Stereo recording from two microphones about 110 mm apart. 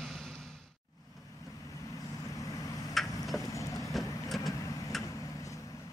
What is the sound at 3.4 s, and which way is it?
Vehicle, 30° left (ahead or behind).